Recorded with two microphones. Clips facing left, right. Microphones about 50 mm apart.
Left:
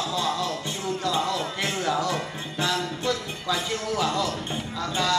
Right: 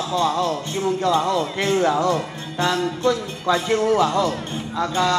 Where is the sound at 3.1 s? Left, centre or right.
Right.